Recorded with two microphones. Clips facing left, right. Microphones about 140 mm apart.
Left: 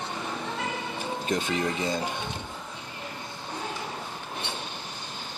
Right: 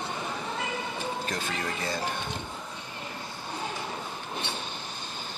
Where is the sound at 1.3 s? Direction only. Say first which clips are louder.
Left 5 dB; 20° left (ahead or behind).